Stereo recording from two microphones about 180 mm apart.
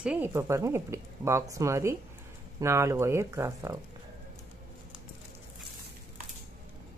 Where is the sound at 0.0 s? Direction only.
10° right (ahead or behind).